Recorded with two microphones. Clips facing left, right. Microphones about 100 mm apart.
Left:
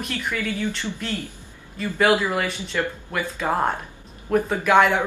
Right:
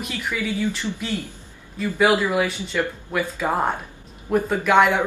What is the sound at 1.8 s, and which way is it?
Speech, 5° right (ahead or behind).